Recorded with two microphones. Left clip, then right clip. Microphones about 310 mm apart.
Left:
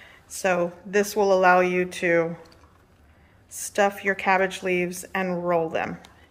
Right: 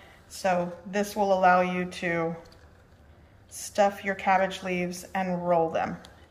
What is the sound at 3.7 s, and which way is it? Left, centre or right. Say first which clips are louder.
Speech: left 2 dB; centre.